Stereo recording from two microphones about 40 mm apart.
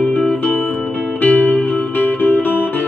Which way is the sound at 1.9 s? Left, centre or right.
Left.